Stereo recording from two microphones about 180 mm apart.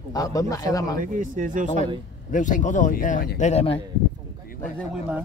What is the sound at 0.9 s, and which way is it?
Speech, 50° right (ahead or behind).